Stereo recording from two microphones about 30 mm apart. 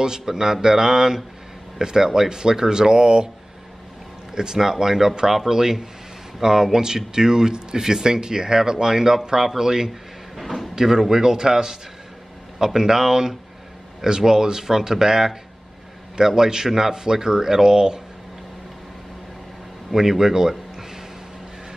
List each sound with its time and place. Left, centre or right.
0.2 s speech: centre
4.6 s speech: centre
9.8 s drawer open or close: centre
10.7 s speech: centre
19.9 s speech: centre